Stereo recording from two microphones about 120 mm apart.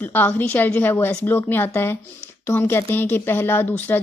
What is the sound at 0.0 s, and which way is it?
A woman's voice, 15° left (ahead or behind).